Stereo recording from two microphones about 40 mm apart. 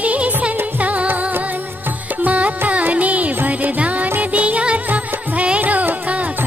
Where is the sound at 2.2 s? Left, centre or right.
Right.